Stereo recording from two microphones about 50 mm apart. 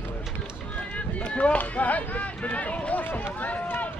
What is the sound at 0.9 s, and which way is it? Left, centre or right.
Speech, left.